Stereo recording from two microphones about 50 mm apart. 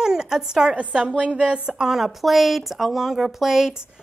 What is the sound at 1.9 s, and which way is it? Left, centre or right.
A woman's voice, centre.